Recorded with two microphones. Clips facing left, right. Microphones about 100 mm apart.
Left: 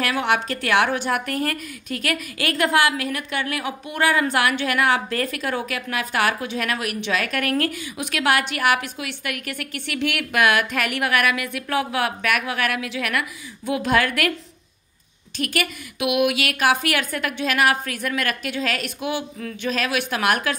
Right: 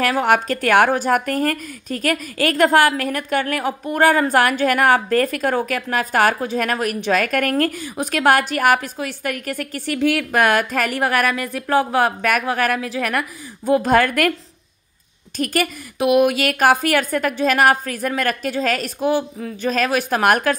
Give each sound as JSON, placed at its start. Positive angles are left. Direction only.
{"t": 0.0, "sound": "speech", "side_deg": -40}
{"t": 15.3, "sound": "a woman's voice", "side_deg": -40}